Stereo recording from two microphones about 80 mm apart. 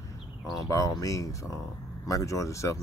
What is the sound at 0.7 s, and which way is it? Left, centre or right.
Speech, left.